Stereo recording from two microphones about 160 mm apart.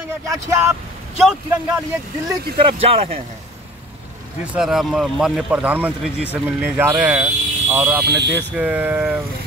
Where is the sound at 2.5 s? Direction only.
40° right (ahead or behind).